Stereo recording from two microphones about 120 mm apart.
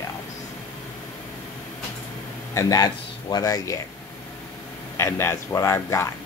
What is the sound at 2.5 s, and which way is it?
Speech, 30° left (ahead or behind).